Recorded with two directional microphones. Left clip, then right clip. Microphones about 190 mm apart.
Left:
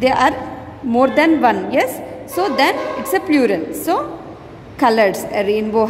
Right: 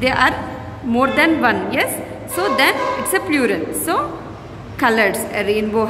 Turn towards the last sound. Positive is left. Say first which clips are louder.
# left 2 dB
turn(degrees=30)  # may be behind; listen again after turning